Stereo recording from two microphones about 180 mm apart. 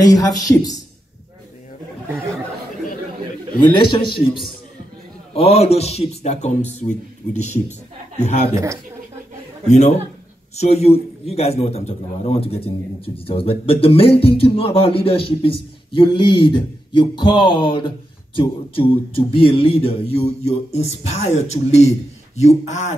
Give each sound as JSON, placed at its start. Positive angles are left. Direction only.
{"t": 0.0, "sound": "speech", "side_deg": 20}
{"t": 3.7, "sound": "a man's voice", "side_deg": 25}
{"t": 9.7, "sound": "a man's voice", "side_deg": 40}